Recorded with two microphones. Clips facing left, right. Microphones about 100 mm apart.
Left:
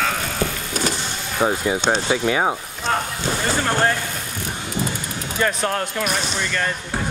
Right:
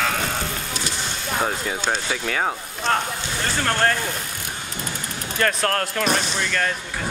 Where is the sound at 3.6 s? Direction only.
10° left (ahead or behind).